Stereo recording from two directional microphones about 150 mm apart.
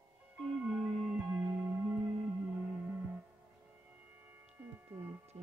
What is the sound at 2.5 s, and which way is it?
Music, 15° right (ahead or behind).